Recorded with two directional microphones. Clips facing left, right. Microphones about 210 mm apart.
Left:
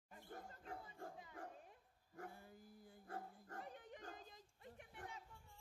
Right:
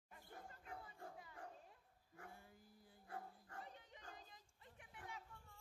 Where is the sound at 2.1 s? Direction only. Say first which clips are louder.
Left 5 dB; 40° left (ahead or behind).